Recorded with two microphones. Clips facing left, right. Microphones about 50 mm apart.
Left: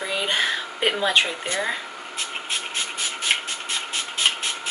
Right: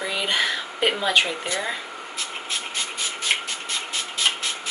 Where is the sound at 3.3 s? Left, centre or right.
Centre.